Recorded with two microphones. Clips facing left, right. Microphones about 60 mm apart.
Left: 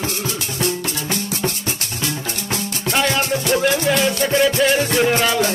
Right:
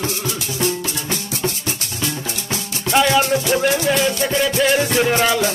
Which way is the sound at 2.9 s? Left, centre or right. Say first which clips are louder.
Right 4 dB; centre.